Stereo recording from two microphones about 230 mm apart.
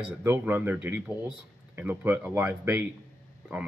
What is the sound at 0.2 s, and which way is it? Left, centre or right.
Speech, centre.